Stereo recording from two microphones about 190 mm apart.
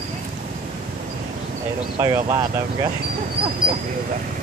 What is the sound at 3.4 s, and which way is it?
Dog, 55° right (ahead or behind).